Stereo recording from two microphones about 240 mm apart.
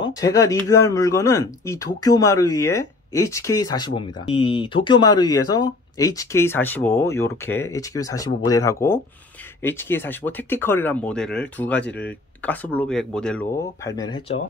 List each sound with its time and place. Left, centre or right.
0.0 s speech: centre
13.8 s speech: centre